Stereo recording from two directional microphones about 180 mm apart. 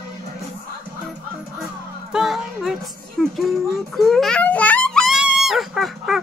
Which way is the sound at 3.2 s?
Centre (ahead or behind).